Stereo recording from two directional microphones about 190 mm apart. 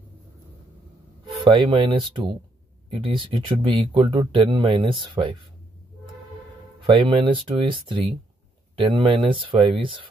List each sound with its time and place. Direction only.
1.2 s speech: 25° right (ahead or behind)
6.8 s speech: 25° right (ahead or behind)